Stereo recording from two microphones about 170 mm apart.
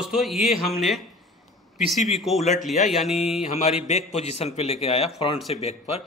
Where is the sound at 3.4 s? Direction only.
45° left (ahead or behind).